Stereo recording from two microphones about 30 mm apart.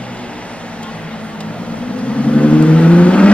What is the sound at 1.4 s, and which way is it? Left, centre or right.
Vehicle, left.